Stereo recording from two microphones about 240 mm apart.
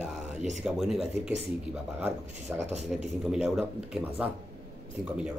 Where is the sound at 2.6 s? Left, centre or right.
Right.